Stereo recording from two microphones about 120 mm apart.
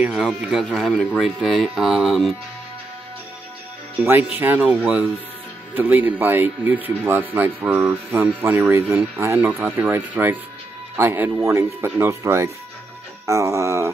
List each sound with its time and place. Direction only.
0.0 s speech: 5° right (ahead or behind)
4.0 s speech: 15° right (ahead or behind)